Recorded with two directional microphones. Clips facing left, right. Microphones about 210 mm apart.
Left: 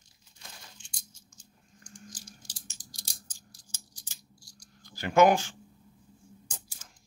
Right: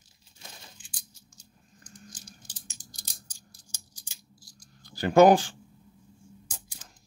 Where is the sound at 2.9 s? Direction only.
Centre (ahead or behind).